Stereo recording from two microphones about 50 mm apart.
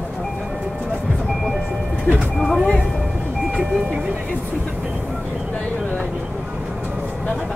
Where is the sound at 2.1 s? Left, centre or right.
Left.